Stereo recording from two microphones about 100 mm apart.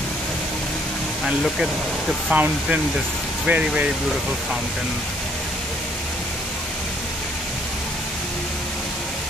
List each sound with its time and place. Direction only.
2.3 s speech: 15° right (ahead or behind)